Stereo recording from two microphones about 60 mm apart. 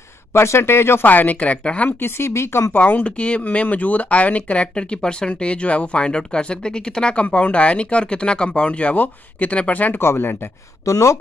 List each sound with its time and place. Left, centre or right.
0.3 s a man's voice: left
1.0 s speech: left
1.9 s a man's voice: left
2.7 s speech: left
9.9 s speech: left
10.9 s speech: left